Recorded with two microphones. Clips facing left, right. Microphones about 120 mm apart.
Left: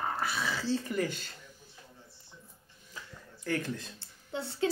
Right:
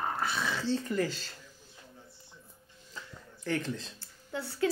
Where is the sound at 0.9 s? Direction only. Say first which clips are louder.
Right 1 dB; 20° left (ahead or behind).